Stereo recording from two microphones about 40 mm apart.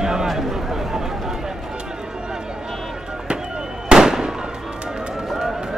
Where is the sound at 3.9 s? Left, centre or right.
Centre.